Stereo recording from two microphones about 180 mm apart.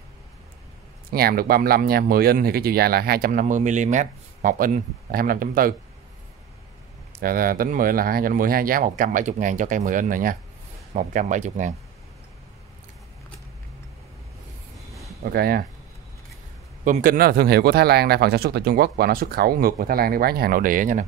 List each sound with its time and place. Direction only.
1.1 s speech: 55° right (ahead or behind)
7.1 s speech: 50° right (ahead or behind)
15.2 s speech: 55° right (ahead or behind)
16.8 s speech: 50° right (ahead or behind)